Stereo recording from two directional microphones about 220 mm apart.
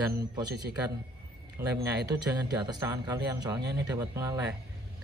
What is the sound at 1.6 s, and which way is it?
Speech, 10° right (ahead or behind).